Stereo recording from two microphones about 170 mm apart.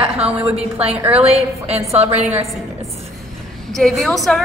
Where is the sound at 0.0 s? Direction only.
35° right (ahead or behind).